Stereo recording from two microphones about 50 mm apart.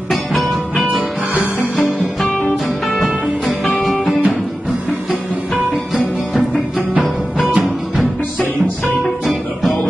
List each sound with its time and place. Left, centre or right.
0.1 s music: centre
1.3 s music: right
2.5 s music: centre